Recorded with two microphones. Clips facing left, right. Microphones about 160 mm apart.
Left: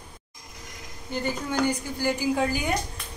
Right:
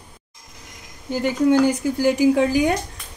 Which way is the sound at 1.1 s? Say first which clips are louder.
Right 11 dB; 90° right.